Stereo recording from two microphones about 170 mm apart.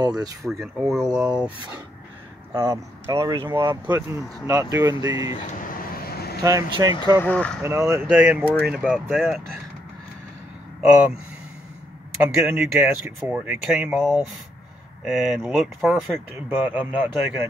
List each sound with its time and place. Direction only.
0.4 s speech: centre (ahead or behind)
2.5 s speech: 15° right (ahead or behind)
3.8 s speech: 10° right (ahead or behind)
5.8 s vehicle: 60° left (ahead or behind)
6.4 s speech: 20° right (ahead or behind)
7.2 s speech: 10° left (ahead or behind)
7.6 s speech: 15° right (ahead or behind); by 9.4 s centre (ahead or behind)
12.2 s speech: 5° right (ahead or behind)
15.0 s speech: centre (ahead or behind)